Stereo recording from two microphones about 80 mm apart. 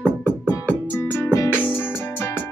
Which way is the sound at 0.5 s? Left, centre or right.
Left.